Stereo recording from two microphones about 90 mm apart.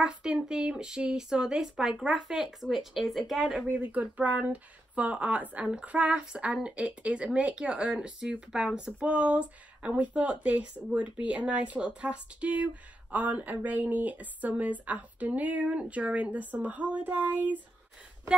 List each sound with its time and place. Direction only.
0.0 s speech: 10° right (ahead or behind)
3.6 s speech: 20° right (ahead or behind)